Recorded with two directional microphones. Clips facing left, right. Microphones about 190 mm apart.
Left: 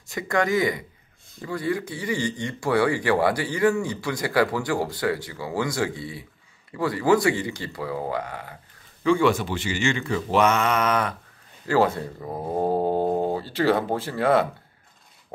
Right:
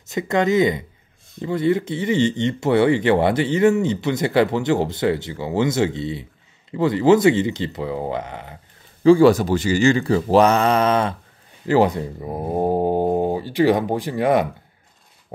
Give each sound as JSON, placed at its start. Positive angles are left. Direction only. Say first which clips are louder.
{"t": 0.0, "sound": "speech", "louder": "right 4 dB", "side_deg": -20}
{"t": 9.0, "sound": "speech", "louder": "right 8 dB", "side_deg": -35}